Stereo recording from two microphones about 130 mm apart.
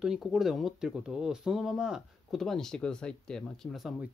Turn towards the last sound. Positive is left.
turn(degrees=0)  # may be behind; listen again after turning